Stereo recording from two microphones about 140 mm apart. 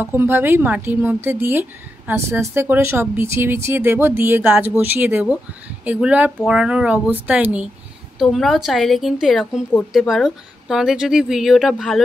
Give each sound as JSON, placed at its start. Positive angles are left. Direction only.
{"t": 0.0, "sound": "speech", "side_deg": -15}
{"t": 8.2, "sound": "speech", "side_deg": 0}